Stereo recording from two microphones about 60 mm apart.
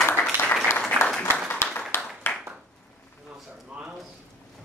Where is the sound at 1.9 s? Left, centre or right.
Left.